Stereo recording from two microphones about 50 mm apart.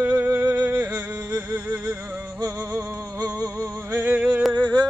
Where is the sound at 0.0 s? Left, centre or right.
Right.